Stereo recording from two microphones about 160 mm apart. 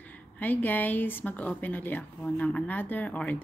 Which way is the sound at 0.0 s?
10° left (ahead or behind).